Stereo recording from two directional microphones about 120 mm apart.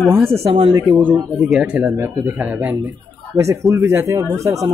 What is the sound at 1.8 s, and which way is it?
Speech, 15° right (ahead or behind).